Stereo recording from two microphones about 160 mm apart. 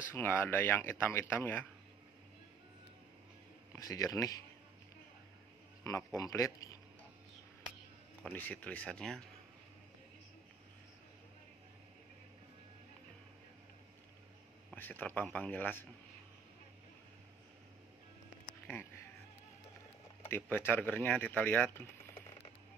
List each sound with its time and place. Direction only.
0.1 s speech: 15° left (ahead or behind)
3.7 s speech: 20° left (ahead or behind)
5.9 s speech: 20° left (ahead or behind)
8.3 s speech: 10° left (ahead or behind)
14.7 s speech: 10° left (ahead or behind)
20.2 s speech: 15° left (ahead or behind)